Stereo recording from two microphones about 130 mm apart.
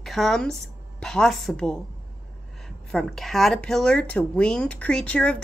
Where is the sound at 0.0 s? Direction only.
Centre (ahead or behind).